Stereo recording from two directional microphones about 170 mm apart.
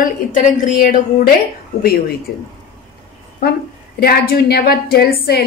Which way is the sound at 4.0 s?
65° left (ahead or behind).